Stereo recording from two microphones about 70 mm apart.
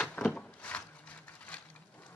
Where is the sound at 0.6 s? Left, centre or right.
Centre.